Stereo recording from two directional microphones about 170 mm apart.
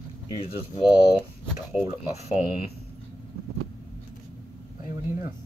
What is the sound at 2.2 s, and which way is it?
Speech, 40° left (ahead or behind).